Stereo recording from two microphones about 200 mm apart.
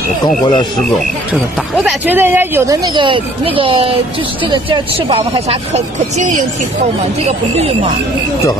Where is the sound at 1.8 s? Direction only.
10° right (ahead or behind); by 6.4 s 40° right (ahead or behind).